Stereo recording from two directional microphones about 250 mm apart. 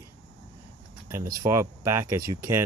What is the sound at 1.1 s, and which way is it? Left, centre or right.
Speech, centre.